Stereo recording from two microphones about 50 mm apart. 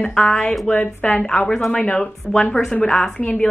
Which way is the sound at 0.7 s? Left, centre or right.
Left.